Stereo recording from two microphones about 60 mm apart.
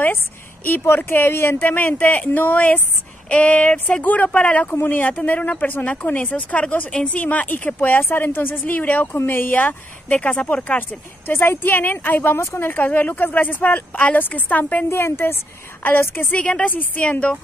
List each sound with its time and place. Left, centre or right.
0.7 s speech: left
12.4 s a woman's voice: left
12.6 s speech: left
14.9 s a woman's voice: left; by 17.4 s centre